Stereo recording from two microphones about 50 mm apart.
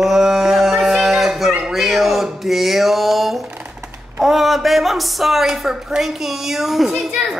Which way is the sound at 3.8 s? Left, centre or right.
Right.